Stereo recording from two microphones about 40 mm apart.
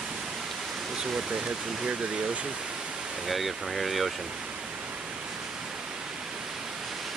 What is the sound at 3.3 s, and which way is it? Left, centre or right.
Speech, centre.